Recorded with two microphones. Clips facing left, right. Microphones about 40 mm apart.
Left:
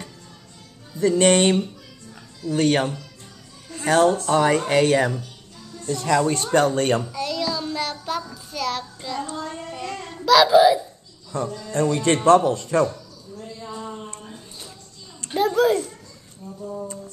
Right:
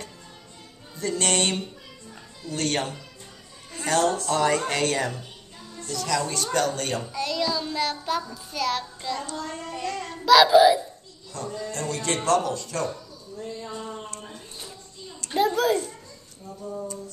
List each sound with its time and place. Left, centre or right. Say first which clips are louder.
0.9 s music: left 9 dB; left
2.5 s speech: left 7 dB; centre
5.9 s speech: left 7 dB; left
7.0 s child singing: left 1 dB; centre
8.5 s a child's voice: even; centre
9.2 s music: left 3 dB; left
10.0 s a child's voice: left 1 dB; centre
11.3 s music: left 7 dB; left
11.7 s speech: left 10 dB; left
12.3 s music: left 8 dB; left
13.6 s a sound: left 1 dB; centre
15.3 s a child's voice: left 3 dB; centre